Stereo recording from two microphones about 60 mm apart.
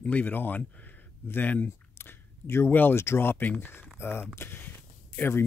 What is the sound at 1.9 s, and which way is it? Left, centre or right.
Speech, left.